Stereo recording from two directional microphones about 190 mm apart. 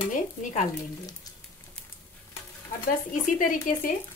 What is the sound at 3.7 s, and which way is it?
Speech, 45° left (ahead or behind).